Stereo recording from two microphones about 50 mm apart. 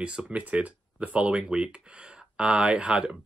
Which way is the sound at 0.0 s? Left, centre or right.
Right.